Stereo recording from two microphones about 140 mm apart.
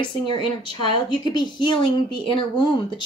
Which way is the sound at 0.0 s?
35° left (ahead or behind).